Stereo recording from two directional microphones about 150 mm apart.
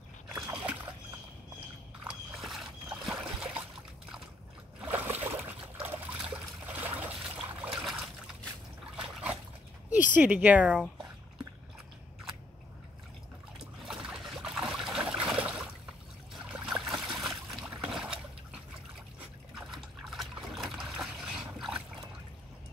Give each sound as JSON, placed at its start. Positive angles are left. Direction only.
{"t": 0.3, "sound": "splash", "side_deg": -5}
{"t": 2.0, "sound": "a sound", "side_deg": 0}
{"t": 4.8, "sound": "trickle", "side_deg": -10}
{"t": 9.8, "sound": "a sound", "side_deg": 60}
{"t": 10.1, "sound": "speech", "side_deg": -10}
{"t": 13.8, "sound": "boat", "side_deg": -5}
{"t": 16.4, "sound": "trickle", "side_deg": -5}
{"t": 17.6, "sound": "boat", "side_deg": -5}
{"t": 19.5, "sound": "trickle", "side_deg": 0}